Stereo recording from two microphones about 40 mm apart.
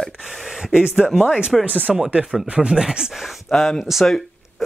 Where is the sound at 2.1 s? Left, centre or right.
Right.